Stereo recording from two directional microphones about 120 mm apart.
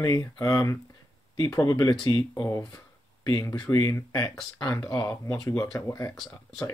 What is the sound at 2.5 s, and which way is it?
Speech, 30° left (ahead or behind).